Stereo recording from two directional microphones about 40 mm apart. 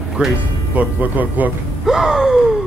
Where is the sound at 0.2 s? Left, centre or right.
Right.